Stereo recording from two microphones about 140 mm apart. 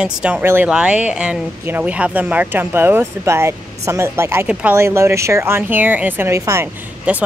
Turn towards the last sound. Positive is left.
turn(degrees=-10)  # may be behind; listen again after turning